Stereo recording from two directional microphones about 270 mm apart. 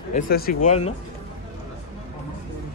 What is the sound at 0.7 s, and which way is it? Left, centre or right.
Speech, left.